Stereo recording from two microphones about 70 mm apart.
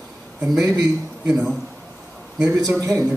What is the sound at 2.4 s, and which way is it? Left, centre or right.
Speech, right.